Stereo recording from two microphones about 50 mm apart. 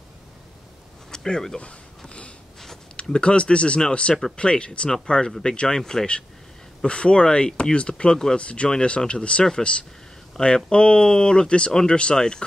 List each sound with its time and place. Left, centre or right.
1.1 s speech: centre
1.6 s a sound: left
3.0 s speech: centre